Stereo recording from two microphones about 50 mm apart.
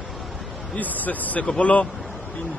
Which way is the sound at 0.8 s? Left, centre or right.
Left.